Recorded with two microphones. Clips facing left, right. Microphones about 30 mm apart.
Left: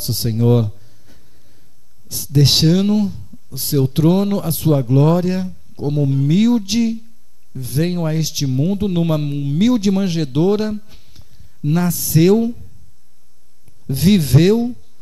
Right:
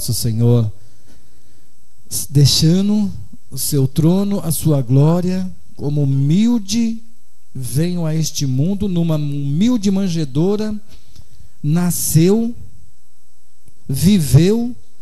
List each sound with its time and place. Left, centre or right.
0.0 s a sound: centre
2.0 s speech: centre
13.8 s speech: centre